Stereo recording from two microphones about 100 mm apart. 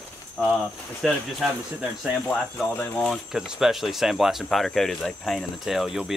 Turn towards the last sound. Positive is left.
turn(degrees=-5)  # may be behind; listen again after turning